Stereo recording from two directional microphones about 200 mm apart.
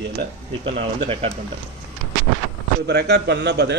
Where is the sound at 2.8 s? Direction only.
55° right (ahead or behind).